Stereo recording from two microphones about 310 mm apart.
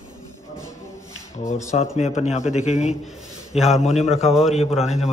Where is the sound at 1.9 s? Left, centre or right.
Left.